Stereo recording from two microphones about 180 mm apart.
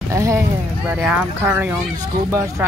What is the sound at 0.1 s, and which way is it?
Speech, 15° right (ahead or behind).